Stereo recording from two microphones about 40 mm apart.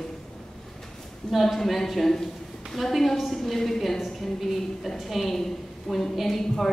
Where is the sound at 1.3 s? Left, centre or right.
Centre.